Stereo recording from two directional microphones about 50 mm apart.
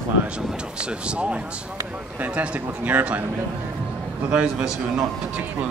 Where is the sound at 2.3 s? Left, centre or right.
Right.